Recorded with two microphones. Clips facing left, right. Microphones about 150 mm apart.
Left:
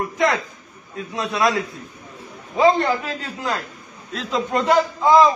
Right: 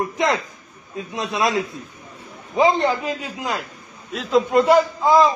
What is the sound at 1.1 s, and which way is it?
A man's voice, 20° right (ahead or behind).